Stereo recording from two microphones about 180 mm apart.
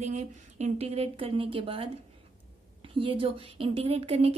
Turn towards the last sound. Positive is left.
turn(degrees=-35)  # may be behind; listen again after turning